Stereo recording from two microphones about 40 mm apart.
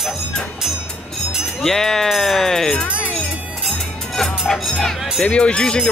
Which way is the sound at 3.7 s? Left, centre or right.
Centre.